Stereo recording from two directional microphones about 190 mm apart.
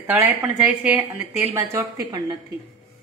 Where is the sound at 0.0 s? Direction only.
10° right (ahead or behind).